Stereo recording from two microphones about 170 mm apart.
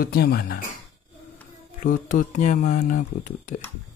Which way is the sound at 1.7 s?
50° left (ahead or behind).